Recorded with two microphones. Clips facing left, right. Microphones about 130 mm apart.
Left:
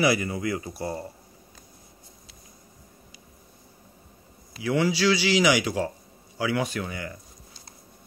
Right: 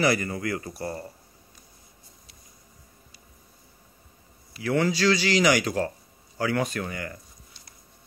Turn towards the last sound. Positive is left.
turn(degrees=10)  # may be behind; listen again after turning